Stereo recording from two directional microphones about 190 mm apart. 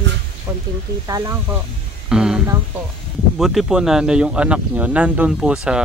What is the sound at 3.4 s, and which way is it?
Speech, centre (ahead or behind).